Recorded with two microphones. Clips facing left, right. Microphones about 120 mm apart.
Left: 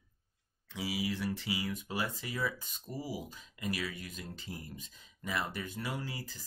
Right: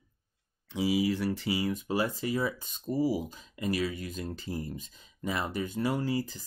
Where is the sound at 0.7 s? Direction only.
25° right (ahead or behind).